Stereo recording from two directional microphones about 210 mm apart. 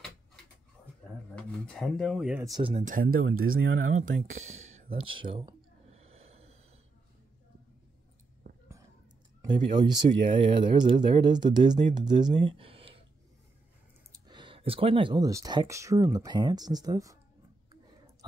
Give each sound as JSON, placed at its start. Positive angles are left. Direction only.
{"t": 1.3, "sound": "speech", "side_deg": 5}
{"t": 2.4, "sound": "speech", "side_deg": -20}
{"t": 2.7, "sound": "speech", "side_deg": -35}
{"t": 3.2, "sound": "speech", "side_deg": -80}
{"t": 3.8, "sound": "speech", "side_deg": -35}
{"t": 5.9, "sound": "snort", "side_deg": -30}
{"t": 9.5, "sound": "speech", "side_deg": -20}
{"t": 14.1, "sound": "speech", "side_deg": -20}